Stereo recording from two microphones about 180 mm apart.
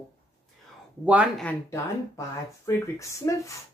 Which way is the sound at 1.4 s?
15° left (ahead or behind).